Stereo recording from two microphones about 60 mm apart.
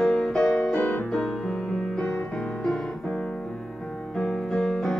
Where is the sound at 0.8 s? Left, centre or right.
Left.